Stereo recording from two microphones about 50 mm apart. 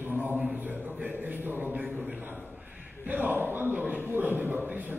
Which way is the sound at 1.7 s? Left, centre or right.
Right.